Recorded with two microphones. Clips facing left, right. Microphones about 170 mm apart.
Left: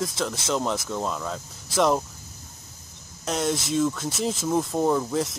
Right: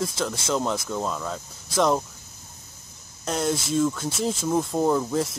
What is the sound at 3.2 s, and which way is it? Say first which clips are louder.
Speech: even; centre (ahead or behind).